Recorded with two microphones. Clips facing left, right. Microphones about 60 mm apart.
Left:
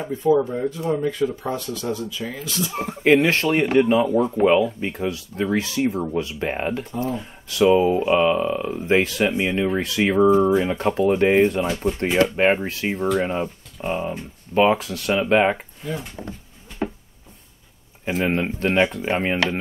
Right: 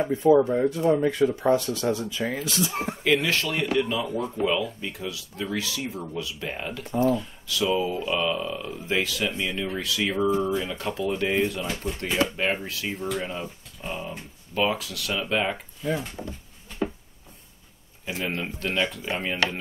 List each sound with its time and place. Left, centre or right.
0.1 s speech: centre
0.8 s speech: centre
2.1 s speech: right
2.6 s speech: centre
3.0 s speech: left
16.2 s speech: centre
16.8 s a sound: left
18.0 s speech: left